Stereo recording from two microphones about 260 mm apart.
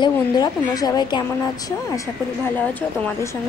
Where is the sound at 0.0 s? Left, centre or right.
Centre.